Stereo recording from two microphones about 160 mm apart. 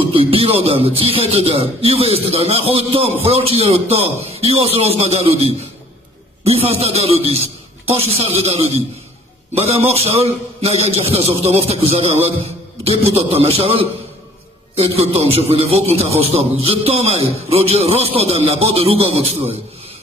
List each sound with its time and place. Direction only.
0.1 s speech: 35° right (ahead or behind)